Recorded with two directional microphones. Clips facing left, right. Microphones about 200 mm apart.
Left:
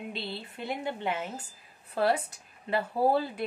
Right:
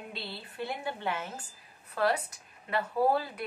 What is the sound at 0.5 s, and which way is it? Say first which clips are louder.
Speech: left 1 dB; 20° left (ahead or behind).